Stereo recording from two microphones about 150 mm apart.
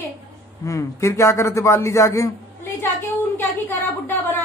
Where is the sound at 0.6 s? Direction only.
20° left (ahead or behind).